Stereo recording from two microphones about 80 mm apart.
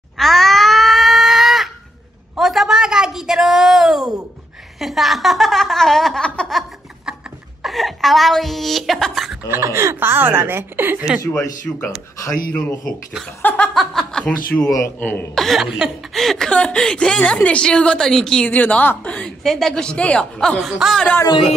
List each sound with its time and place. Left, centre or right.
0.2 s a sound: centre
7.6 s chuckle: centre
9.5 s speech: right
11.7 s speech: left
13.4 s laughter: left
13.7 s chuckle: centre
14.6 s a man's voice: left
15.0 s speech: left
15.3 s speech: centre
16.4 s a woman's voice: centre
19.4 s a woman's voice: centre
20.6 s speech: centre